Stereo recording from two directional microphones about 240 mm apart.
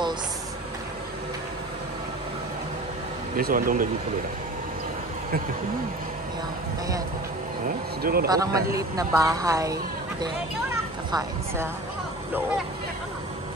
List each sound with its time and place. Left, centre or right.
3.3 s speech: right
8.0 s speech: right
8.3 s a woman's voice: centre
11.1 s a woman's voice: centre